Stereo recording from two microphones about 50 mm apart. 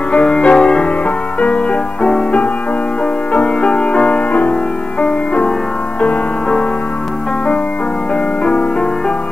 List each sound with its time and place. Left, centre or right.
0.1 s music: left